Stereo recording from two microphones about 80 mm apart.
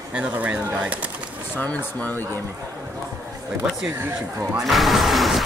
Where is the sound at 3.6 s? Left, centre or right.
Centre.